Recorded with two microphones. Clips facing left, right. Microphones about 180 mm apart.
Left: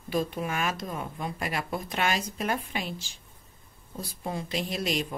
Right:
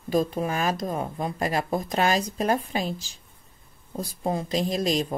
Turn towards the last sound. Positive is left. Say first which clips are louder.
# right 5 dB
turn(degrees=-40)  # may be behind; listen again after turning